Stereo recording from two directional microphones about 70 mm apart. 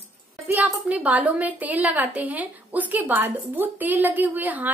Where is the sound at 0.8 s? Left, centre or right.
Right.